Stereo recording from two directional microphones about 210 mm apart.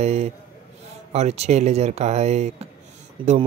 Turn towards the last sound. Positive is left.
turn(degrees=-25)  # may be behind; listen again after turning